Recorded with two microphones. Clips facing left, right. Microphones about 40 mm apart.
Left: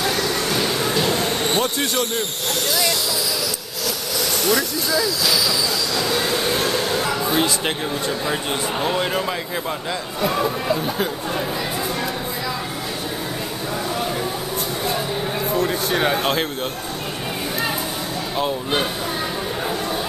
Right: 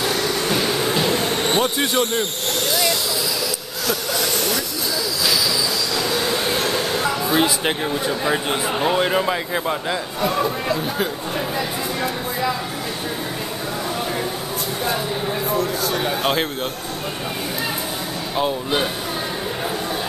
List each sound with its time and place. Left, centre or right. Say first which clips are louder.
0.6 s a sound: right 1 dB; centre
6.1 s speech: left 1 dB; centre
10.2 s speech: left 1 dB; centre
15.6 s speech: left 2 dB; left
16.2 s speech: right 1 dB; centre